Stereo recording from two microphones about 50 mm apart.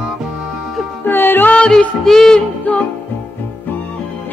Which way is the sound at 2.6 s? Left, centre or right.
Left.